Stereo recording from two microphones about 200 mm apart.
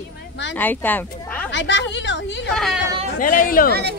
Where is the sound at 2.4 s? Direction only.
Centre (ahead or behind).